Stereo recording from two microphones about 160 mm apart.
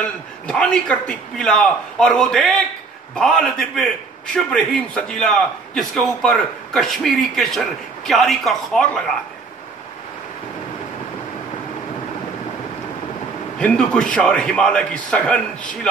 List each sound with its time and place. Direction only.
0.0 s a man's voice: 5° left (ahead or behind)
13.6 s a man's voice: 5° left (ahead or behind)